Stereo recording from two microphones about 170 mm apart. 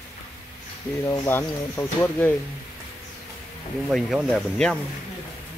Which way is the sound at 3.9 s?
Centre (ahead or behind).